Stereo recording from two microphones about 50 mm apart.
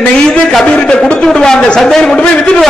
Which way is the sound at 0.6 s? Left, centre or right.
Left.